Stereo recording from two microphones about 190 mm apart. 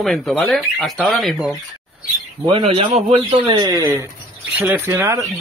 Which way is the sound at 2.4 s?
30° right (ahead or behind).